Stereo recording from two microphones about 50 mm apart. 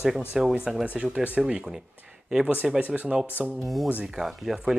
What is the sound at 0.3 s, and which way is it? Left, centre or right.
A man's voice, centre.